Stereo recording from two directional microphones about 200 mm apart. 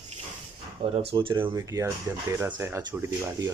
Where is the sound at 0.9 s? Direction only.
25° right (ahead or behind).